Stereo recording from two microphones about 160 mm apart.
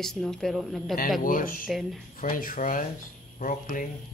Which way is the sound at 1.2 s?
60° left (ahead or behind).